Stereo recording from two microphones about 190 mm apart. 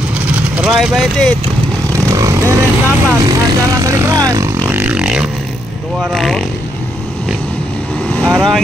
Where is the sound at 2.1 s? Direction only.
15° right (ahead or behind).